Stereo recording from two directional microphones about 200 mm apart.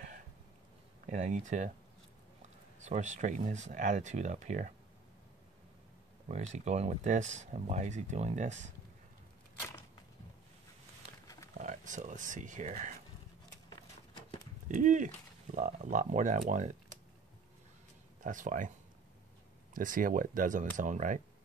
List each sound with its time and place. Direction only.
1.0 s speech: 35° right (ahead or behind)
2.8 s speech: 35° right (ahead or behind)
6.2 s speech: 35° right (ahead or behind)
11.2 s a sound: 15° left (ahead or behind)
11.6 s speech: 40° right (ahead or behind)
14.7 s speech: 40° right (ahead or behind)
18.2 s speech: 40° right (ahead or behind)
19.7 s speech: 45° right (ahead or behind)